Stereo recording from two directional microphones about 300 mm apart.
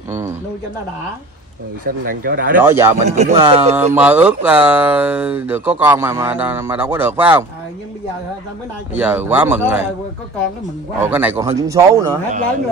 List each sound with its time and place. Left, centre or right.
1.9 s speech: right
2.5 s a man's voice: centre
3.1 s speech: right
3.9 s speech: centre
8.9 s a man's voice: centre
11.0 s a man's voice: centre